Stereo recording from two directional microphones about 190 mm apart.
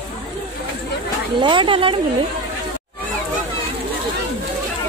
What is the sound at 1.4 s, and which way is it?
Speech, 25° right (ahead or behind).